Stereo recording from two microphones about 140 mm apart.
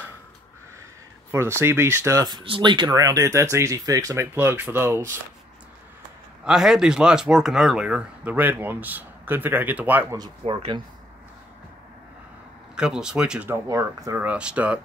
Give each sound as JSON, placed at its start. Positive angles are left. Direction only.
{"t": 1.3, "sound": "speech", "side_deg": -20}
{"t": 2.2, "sound": "speech", "side_deg": -35}
{"t": 6.4, "sound": "speech", "side_deg": -5}
{"t": 10.4, "sound": "speech", "side_deg": -40}
{"t": 12.7, "sound": "speech", "side_deg": -5}
{"t": 13.5, "sound": "speech", "side_deg": -20}
{"t": 14.2, "sound": "speech", "side_deg": -10}